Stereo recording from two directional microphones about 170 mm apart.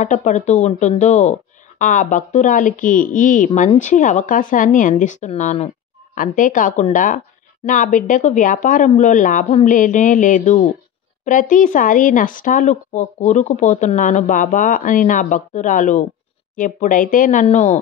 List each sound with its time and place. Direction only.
0.0 s speech: 45° left (ahead or behind)
6.1 s speech: 50° left (ahead or behind)